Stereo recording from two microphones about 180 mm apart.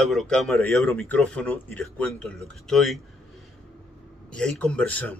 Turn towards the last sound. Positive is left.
turn(degrees=10)  # may be behind; listen again after turning